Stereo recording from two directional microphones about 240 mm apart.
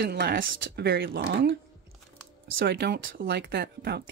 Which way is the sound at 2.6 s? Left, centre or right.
Right.